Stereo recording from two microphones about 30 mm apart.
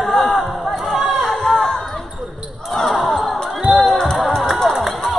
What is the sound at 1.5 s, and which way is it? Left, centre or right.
Basketball bounce, left.